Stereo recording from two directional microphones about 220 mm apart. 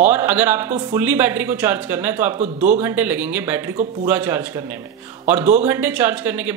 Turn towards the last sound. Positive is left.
turn(degrees=-10)  # may be behind; listen again after turning